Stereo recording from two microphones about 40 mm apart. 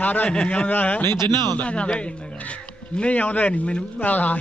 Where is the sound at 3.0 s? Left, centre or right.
Left.